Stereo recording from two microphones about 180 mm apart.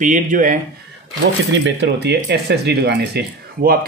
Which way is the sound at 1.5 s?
75° right (ahead or behind).